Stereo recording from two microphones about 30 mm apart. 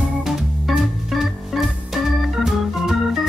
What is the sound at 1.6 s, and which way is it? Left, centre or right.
Organ, centre.